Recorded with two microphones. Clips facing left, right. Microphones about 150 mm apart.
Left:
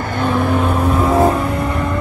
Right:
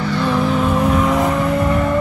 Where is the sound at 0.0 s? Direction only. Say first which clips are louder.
Even; 50° left (ahead or behind).